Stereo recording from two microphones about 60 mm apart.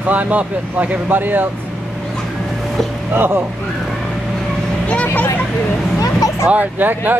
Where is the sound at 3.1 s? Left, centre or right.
Right.